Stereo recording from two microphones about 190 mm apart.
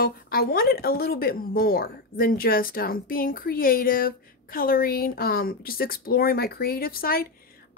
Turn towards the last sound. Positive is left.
turn(degrees=50)  # may be behind; listen again after turning